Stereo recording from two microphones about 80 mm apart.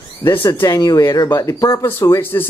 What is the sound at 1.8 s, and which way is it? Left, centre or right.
Speech, left.